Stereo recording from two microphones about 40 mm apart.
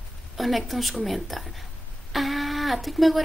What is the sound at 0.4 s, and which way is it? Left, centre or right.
Speech, centre.